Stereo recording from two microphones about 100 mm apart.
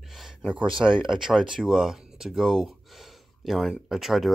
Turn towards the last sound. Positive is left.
turn(degrees=-5)  # may be behind; listen again after turning